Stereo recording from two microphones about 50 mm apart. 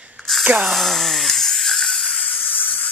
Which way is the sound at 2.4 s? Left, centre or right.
Left.